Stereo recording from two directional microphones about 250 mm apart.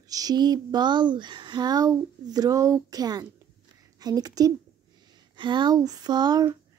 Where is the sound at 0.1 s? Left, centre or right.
Centre.